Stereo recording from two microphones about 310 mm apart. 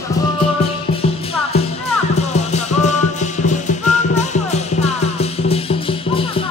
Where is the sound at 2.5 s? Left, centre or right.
Left.